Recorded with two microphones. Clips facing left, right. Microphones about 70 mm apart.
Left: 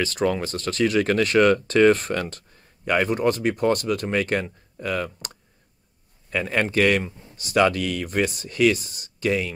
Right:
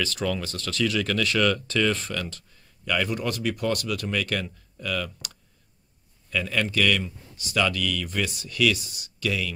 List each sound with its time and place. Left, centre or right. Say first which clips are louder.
0.0 s speech: left 5 dB; left